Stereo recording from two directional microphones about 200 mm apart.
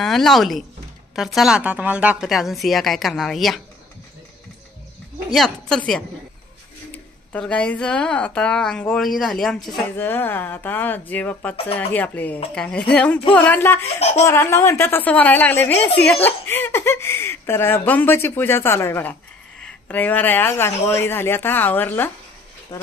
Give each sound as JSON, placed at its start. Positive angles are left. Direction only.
{"t": 0.0, "sound": "a woman's voice", "side_deg": 0}
{"t": 5.3, "sound": "a woman's voice", "side_deg": 0}
{"t": 13.9, "sound": "speech", "side_deg": 30}
{"t": 14.2, "sound": "speech", "side_deg": 10}